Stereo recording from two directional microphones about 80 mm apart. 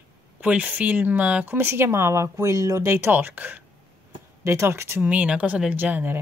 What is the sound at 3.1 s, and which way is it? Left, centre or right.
Speech, right.